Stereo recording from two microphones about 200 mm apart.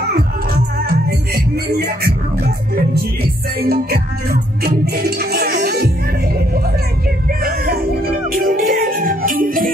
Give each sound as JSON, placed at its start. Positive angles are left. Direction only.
{"t": 0.8, "sound": "music", "side_deg": -50}
{"t": 7.4, "sound": "music", "side_deg": -50}